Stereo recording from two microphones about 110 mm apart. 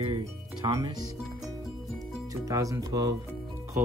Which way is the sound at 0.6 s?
35° right (ahead or behind).